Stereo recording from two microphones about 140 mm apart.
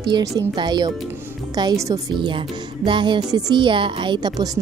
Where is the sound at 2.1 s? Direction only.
35° right (ahead or behind).